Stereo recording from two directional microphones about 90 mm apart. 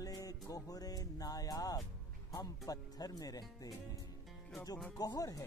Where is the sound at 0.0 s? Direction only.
45° left (ahead or behind).